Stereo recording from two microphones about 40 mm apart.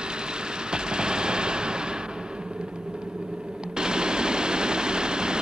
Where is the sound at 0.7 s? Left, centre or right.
Right.